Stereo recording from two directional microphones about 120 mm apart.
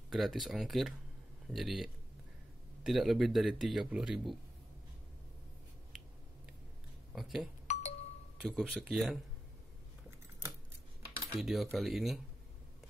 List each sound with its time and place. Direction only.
0.1 s speech: centre (ahead or behind)
7.1 s speech: centre (ahead or behind)
7.6 s music: 70° left (ahead or behind)
8.5 s speech: centre (ahead or behind)
11.3 s speech: centre (ahead or behind)